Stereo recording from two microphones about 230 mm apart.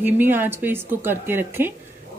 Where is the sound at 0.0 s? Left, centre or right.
Centre.